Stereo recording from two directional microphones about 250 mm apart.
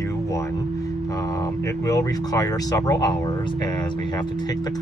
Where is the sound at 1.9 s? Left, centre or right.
Centre.